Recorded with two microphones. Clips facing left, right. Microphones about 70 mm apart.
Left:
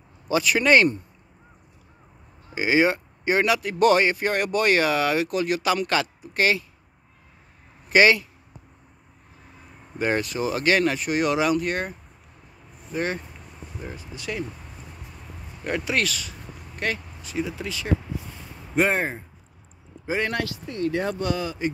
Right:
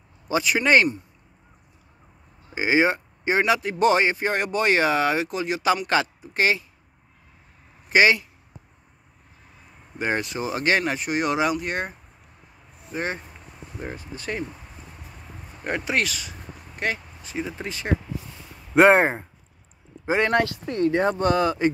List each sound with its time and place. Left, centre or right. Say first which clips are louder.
0.3 s speech: left 1 dB; right
2.5 s speech: even; right
7.9 s speech: left 1 dB; right
9.9 s speech: left 2 dB; right
13.7 s speech: right 3 dB; right
15.6 s speech: even; right
18.8 s speech: right 7 dB; right
20.1 s speech: right 5 dB; right